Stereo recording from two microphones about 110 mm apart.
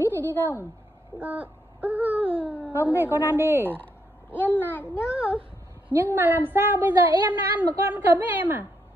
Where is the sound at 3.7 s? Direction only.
15° left (ahead or behind).